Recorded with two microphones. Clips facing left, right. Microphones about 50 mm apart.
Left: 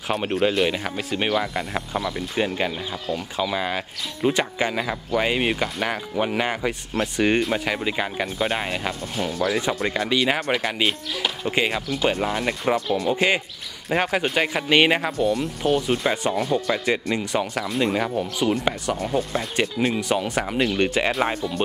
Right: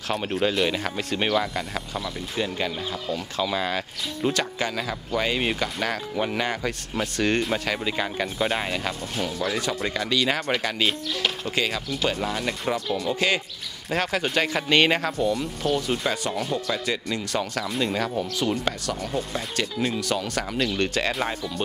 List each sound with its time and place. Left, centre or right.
0.2 s speech: centre
9.5 s speech: centre
11.4 s speech: left
15.6 s speech: left